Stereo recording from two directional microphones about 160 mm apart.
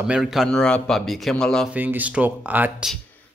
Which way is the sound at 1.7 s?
10° right (ahead or behind).